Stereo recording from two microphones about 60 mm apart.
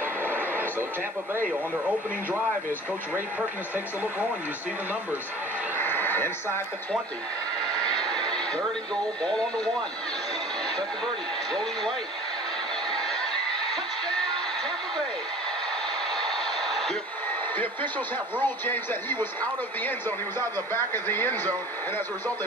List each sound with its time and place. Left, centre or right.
5.8 s radio: left
7.8 s a sound: centre
9.2 s speech: centre
16.2 s a sound: centre
18.4 s speech: left
20.3 s speech: left